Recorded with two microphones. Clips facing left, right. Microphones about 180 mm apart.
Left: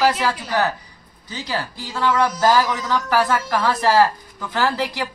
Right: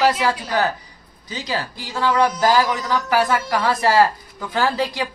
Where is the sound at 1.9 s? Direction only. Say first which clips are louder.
Right 1 dB; 15° right (ahead or behind).